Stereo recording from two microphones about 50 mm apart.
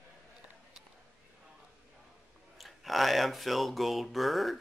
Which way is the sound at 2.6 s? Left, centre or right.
Centre.